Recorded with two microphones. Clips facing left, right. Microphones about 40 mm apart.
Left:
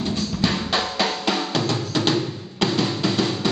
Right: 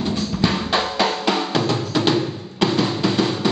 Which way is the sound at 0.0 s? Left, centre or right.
Centre.